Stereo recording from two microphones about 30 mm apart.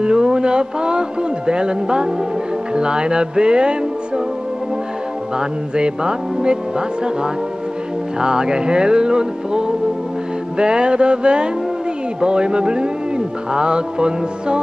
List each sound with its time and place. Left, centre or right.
0.0 s speech: right
5.4 s music: right
8.2 s music: right
10.6 s speech: right